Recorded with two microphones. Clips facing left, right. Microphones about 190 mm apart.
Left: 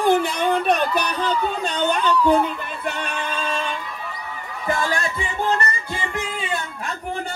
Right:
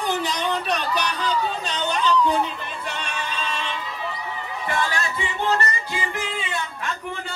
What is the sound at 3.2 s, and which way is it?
Synthetic singing, 55° left (ahead or behind).